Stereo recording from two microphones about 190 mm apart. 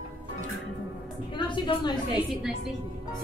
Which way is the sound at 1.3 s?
25° left (ahead or behind).